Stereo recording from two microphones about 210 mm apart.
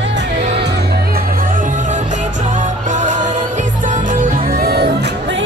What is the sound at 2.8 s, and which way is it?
Music, 35° right (ahead or behind).